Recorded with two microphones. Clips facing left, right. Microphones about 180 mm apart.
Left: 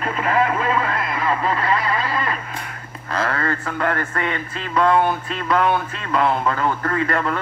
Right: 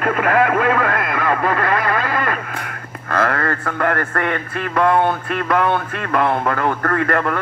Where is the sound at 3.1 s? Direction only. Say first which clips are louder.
Right 3 dB; 55° right (ahead or behind).